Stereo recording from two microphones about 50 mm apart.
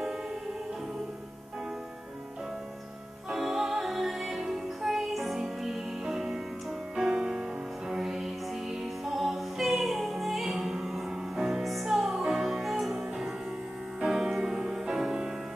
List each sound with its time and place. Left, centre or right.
3.3 s music: centre